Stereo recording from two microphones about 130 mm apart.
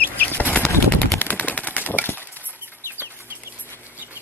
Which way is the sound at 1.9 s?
15° left (ahead or behind).